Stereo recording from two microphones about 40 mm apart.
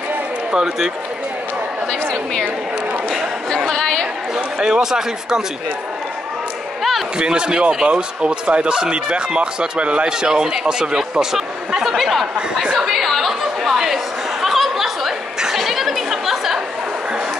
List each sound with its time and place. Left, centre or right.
0.5 s speech: centre
1.9 s a woman's voice: left
2.4 s speech: right
3.4 s speech: centre
4.6 s speech: centre
7.2 s speech: right
10.0 s speech: centre
11.3 s speech: centre
12.8 s chatter: centre
14.4 s a sound: centre
15.4 s chatter: centre